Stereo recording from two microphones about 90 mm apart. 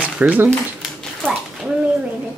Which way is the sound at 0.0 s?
15° right (ahead or behind).